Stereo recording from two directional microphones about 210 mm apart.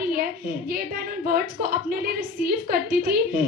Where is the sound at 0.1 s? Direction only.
45° right (ahead or behind).